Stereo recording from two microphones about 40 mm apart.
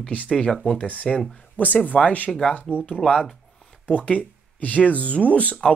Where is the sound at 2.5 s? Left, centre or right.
Left.